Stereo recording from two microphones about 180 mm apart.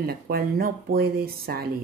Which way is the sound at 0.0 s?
55° right (ahead or behind).